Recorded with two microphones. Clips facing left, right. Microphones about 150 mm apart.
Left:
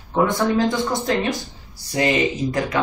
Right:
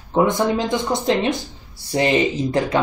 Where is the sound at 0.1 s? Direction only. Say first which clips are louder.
Right 1 dB; 15° right (ahead or behind).